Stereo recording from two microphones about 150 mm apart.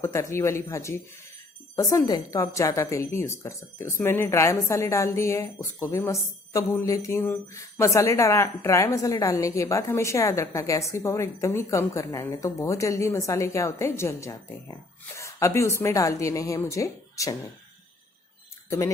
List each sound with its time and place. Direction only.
0.0 s a woman's voice: 20° left (ahead or behind)